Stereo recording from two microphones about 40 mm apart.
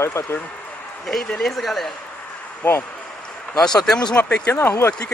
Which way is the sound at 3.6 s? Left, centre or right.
Centre.